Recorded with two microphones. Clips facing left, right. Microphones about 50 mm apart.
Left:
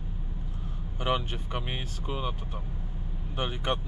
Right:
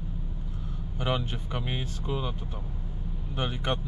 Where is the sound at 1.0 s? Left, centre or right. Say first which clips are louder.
Left 1 dB; left.